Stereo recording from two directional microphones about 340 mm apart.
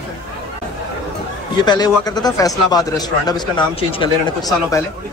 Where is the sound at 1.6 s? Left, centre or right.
Centre.